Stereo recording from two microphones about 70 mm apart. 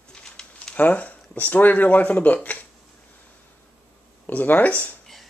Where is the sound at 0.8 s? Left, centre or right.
Left.